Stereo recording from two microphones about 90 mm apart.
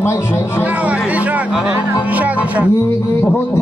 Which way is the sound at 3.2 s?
30° left (ahead or behind).